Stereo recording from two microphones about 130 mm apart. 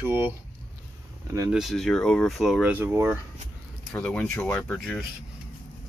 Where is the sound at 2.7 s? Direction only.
15° right (ahead or behind).